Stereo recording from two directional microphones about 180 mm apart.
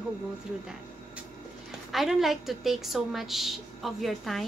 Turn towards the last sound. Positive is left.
turn(degrees=0)  # may be behind; listen again after turning